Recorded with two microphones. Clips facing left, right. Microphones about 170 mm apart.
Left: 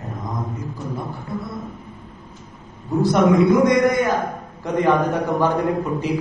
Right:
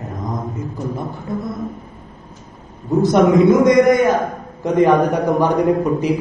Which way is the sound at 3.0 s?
20° right (ahead or behind).